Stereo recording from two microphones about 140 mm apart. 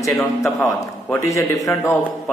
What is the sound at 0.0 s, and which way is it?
A man's voice, 20° left (ahead or behind).